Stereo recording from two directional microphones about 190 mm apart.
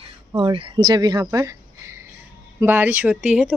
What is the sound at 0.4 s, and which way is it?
A woman's voice, 25° right (ahead or behind).